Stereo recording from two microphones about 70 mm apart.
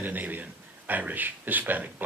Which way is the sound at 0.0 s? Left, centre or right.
Right.